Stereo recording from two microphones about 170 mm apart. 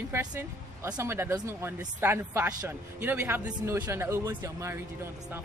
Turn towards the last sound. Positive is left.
turn(degrees=-15)  # may be behind; listen again after turning